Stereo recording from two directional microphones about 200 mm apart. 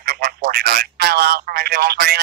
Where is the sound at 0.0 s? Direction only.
50° right (ahead or behind).